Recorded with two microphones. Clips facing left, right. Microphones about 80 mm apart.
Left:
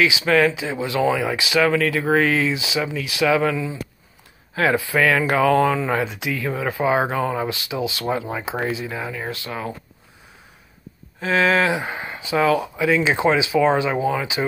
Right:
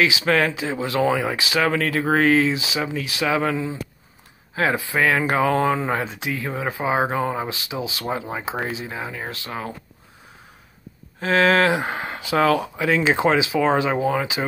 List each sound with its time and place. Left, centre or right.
0.0 s speech: right
11.1 s speech: right
11.9 s speech: right
12.4 s speech: right